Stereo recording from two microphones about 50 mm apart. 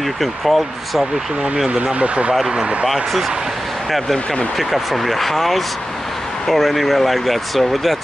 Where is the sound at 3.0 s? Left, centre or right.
Centre.